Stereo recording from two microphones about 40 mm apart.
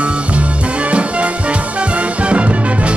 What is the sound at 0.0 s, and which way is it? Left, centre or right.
Music, right.